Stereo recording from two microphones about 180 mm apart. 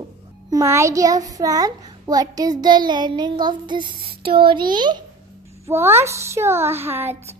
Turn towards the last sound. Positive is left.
turn(degrees=-10)  # may be behind; listen again after turning